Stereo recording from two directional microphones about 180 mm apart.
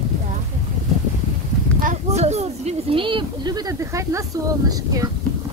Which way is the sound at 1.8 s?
40° right (ahead or behind).